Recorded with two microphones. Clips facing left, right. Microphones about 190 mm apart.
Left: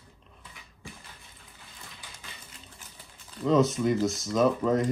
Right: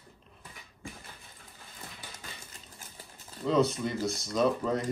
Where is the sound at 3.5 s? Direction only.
Centre (ahead or behind).